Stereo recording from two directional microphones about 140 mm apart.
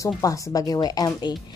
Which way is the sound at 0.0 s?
25° left (ahead or behind).